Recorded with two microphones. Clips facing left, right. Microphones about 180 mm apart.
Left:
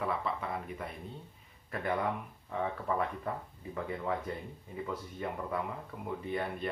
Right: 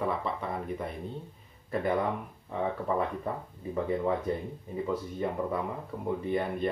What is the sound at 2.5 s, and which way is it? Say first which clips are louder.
Speech: right 3 dB; 25° right (ahead or behind).